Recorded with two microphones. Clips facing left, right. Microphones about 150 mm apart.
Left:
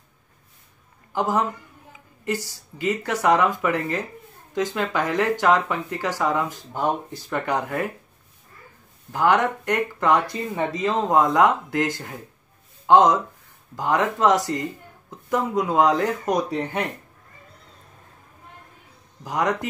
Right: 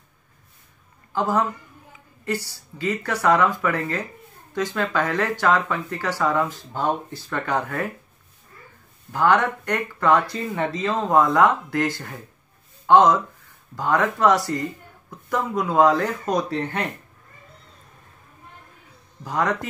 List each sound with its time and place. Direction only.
1.1 s a woman's voice: 15° left (ahead or behind)
9.1 s speech: 15° left (ahead or behind)
19.2 s speech: 15° left (ahead or behind)